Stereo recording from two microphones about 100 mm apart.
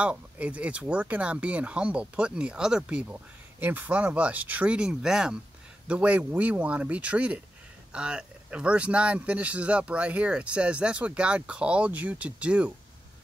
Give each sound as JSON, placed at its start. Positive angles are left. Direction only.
{"t": 0.0, "sound": "speech", "side_deg": -15}